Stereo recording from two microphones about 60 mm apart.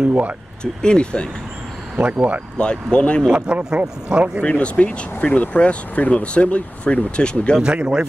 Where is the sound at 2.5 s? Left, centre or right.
Centre.